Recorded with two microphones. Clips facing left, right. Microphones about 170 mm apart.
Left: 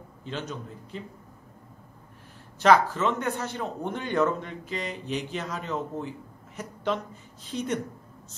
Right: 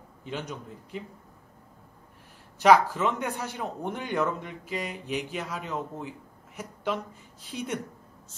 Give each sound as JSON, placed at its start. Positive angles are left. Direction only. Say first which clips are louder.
{"t": 0.2, "sound": "speech", "louder": "left 1 dB", "side_deg": -15}
{"t": 2.6, "sound": "a woman's voice", "louder": "even", "side_deg": -10}